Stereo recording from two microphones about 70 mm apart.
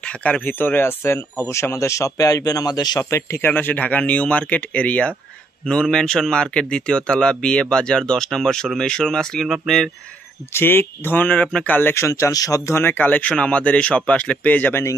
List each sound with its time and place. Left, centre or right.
0.0 s speech: centre; by 3.0 s left
3.0 s speech: left; by 9.8 s centre
10.5 s speech: left
11.9 s speech: left
12.7 s speech: left